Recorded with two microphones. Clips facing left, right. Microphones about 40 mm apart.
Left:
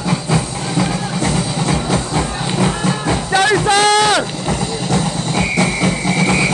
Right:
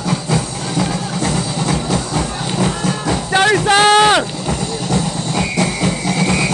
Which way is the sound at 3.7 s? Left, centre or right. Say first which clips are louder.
Right 4 dB; right.